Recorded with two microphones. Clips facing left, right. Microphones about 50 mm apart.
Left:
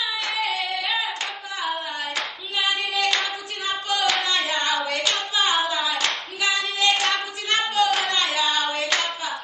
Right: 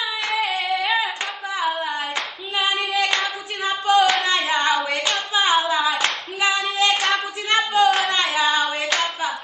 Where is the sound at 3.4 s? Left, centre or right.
Right.